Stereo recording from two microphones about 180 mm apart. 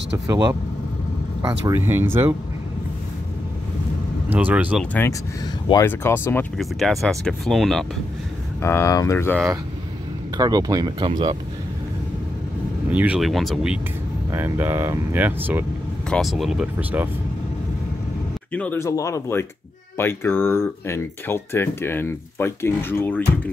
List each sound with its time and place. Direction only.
0.3 s speech: 20° right (ahead or behind)
4.3 s speech: 10° right (ahead or behind)
5.7 s speech: 15° left (ahead or behind)
6.6 s speech: centre (ahead or behind)
8.5 s speech: 15° left (ahead or behind)
10.3 s speech: 20° right (ahead or behind)
12.9 s speech: 10° right (ahead or behind)
14.3 s speech: 15° right (ahead or behind)
16.1 s speech: centre (ahead or behind)
18.5 s speech: 10° left (ahead or behind)